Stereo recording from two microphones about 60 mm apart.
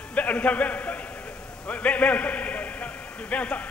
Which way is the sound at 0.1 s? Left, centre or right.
Left.